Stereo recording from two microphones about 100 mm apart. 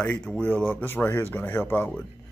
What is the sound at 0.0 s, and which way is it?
Speech, 10° left (ahead or behind).